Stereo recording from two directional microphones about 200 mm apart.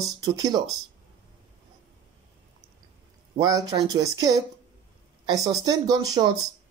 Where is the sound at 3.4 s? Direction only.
20° right (ahead or behind).